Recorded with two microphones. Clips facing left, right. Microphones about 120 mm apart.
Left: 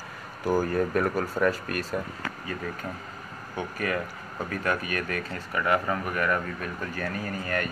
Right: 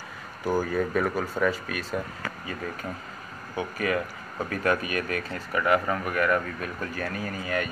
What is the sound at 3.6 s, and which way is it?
Speech, 15° right (ahead or behind).